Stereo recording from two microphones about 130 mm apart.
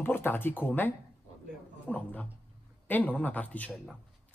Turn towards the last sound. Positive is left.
turn(degrees=10)  # may be behind; listen again after turning